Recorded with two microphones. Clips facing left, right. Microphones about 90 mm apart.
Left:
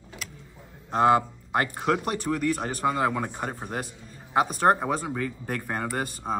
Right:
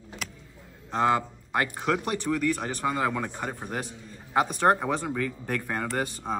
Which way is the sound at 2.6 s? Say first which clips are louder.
Left 2 dB; 35° left (ahead or behind).